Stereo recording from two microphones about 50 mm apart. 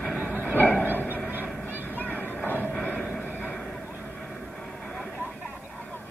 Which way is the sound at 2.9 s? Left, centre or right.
Centre.